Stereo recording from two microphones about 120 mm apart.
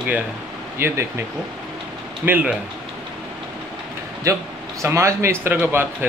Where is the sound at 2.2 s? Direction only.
15° right (ahead or behind).